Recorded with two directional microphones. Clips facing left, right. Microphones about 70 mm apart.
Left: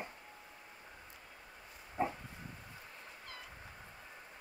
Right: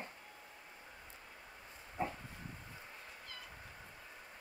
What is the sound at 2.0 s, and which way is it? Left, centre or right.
Pig, centre.